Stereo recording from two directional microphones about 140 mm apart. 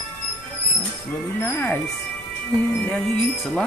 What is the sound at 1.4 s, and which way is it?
Speech, 20° left (ahead or behind).